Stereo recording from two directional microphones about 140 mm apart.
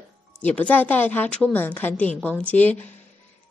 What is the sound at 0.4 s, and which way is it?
A woman's voice, 10° left (ahead or behind).